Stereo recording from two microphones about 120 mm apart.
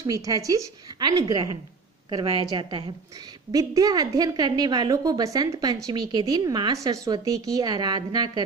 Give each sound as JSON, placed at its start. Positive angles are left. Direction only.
{"t": 0.0, "sound": "a woman's voice", "side_deg": -30}